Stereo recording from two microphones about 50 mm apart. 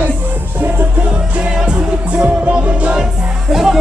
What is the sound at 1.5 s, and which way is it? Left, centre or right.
Music, right.